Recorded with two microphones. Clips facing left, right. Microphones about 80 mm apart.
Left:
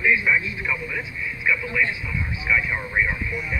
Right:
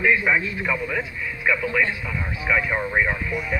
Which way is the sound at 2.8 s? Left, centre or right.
Right.